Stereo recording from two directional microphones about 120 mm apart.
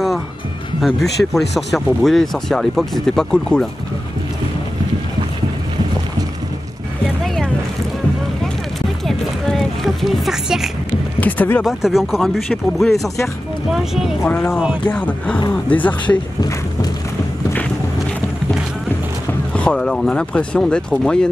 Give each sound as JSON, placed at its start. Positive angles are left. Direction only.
{"t": 0.7, "sound": "speech", "side_deg": 0}
{"t": 9.0, "sound": "a sound", "side_deg": 0}
{"t": 11.1, "sound": "speech", "side_deg": 15}
{"t": 11.6, "sound": "speech", "side_deg": -5}
{"t": 14.3, "sound": "speech", "side_deg": 10}
{"t": 16.3, "sound": "a sound", "side_deg": 35}
{"t": 19.5, "sound": "speech", "side_deg": 10}